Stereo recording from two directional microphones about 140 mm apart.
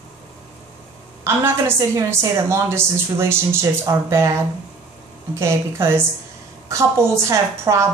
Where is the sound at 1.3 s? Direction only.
20° right (ahead or behind).